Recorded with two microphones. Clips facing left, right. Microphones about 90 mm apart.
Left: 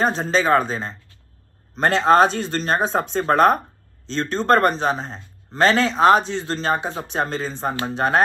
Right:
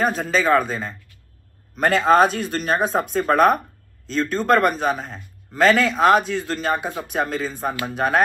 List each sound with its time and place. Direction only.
0.0 s a man's voice: 30° left (ahead or behind)